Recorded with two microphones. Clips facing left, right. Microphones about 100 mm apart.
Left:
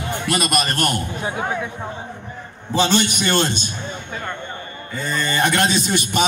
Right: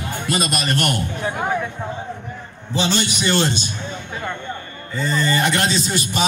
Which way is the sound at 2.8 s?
55° left (ahead or behind).